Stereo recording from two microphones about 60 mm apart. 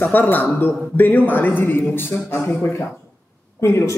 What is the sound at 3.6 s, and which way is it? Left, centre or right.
Speech, left.